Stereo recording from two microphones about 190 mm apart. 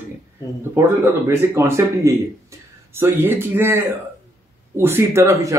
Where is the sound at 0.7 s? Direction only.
15° right (ahead or behind).